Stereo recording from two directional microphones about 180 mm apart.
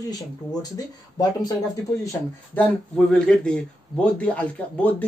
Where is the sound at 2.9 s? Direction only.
5° left (ahead or behind).